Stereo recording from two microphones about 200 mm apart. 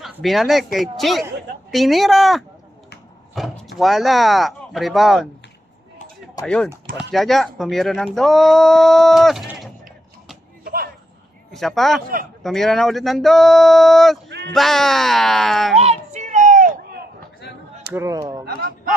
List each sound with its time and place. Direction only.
0.0 s speech: centre (ahead or behind)
6.4 s speech: 5° left (ahead or behind)
10.6 s a sound: 50° right (ahead or behind)
11.5 s speech: centre (ahead or behind)
15.8 s a sound: 35° right (ahead or behind)
17.9 s speech: 15° right (ahead or behind)
18.4 s speech: 50° right (ahead or behind)